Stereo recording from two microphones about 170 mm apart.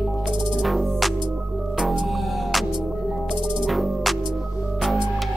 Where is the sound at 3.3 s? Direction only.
30° right (ahead or behind).